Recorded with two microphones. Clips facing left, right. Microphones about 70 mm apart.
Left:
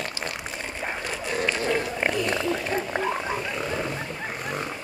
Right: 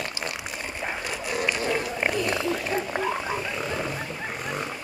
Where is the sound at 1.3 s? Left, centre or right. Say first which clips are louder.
Left 1 dB; centre.